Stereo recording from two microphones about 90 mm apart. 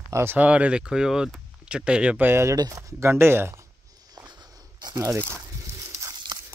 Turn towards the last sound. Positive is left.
turn(degrees=-35)  # may be behind; listen again after turning